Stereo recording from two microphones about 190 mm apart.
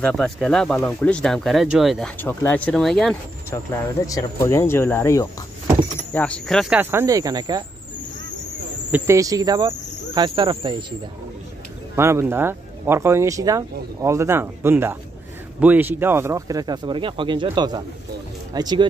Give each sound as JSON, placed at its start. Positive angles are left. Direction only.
{"t": 0.0, "sound": "speech", "side_deg": 5}
{"t": 3.4, "sound": "speech", "side_deg": 15}
{"t": 6.8, "sound": "speech", "side_deg": -10}
{"t": 8.9, "sound": "speech", "side_deg": -15}
{"t": 11.9, "sound": "speech", "side_deg": -15}